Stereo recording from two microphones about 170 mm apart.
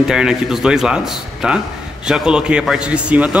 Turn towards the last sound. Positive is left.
turn(degrees=-5)  # may be behind; listen again after turning